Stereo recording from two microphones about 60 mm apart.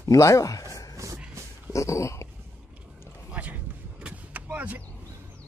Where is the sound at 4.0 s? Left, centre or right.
Right.